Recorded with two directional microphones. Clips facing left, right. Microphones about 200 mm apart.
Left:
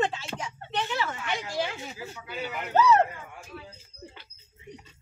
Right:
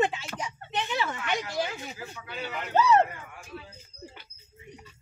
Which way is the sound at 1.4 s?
25° left (ahead or behind).